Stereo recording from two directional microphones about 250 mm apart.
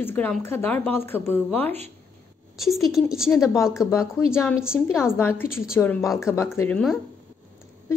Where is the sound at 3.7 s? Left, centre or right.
Centre.